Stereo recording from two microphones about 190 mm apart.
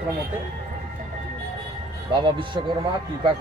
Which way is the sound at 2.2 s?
25° right (ahead or behind).